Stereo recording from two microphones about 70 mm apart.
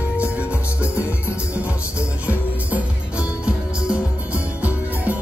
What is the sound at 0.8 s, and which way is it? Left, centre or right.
Music, left.